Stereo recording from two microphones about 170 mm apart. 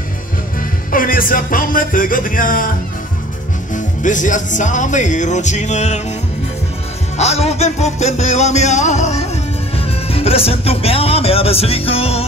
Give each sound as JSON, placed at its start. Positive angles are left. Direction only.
{"t": 0.6, "sound": "music", "side_deg": 55}
{"t": 3.7, "sound": "speech", "side_deg": 50}
{"t": 7.2, "sound": "music", "side_deg": 40}
{"t": 9.8, "sound": "speech", "side_deg": 35}